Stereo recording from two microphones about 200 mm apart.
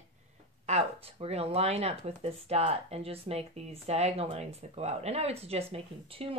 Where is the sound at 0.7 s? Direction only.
30° right (ahead or behind).